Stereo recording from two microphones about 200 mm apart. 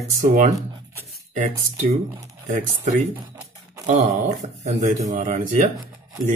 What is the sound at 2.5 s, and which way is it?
Speech, 40° right (ahead or behind).